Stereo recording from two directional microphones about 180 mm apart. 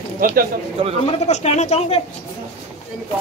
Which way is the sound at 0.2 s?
50° right (ahead or behind).